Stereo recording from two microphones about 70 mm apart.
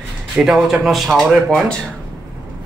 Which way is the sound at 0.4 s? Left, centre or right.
Centre.